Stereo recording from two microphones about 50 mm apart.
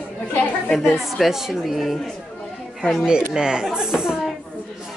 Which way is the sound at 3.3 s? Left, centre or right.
Centre.